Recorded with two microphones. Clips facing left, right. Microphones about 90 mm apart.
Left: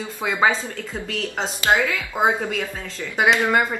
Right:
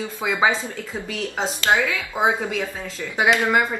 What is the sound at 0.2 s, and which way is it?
Speech, 5° right (ahead or behind).